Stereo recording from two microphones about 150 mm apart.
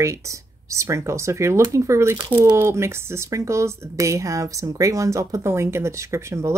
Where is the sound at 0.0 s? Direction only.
20° right (ahead or behind).